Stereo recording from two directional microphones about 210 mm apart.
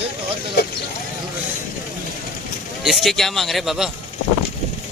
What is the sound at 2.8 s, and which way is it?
A man's voice, centre (ahead or behind).